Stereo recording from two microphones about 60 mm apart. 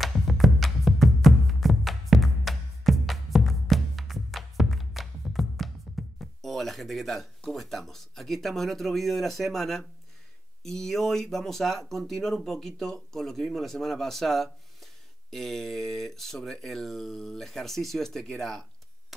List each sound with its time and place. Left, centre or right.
0.0 s music: centre
7.5 s speech: centre